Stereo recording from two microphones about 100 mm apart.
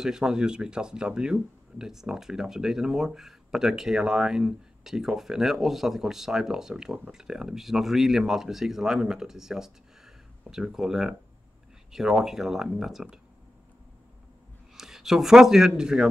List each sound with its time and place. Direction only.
0.0 s speech: 5° right (ahead or behind)
14.8 s speech: 5° right (ahead or behind)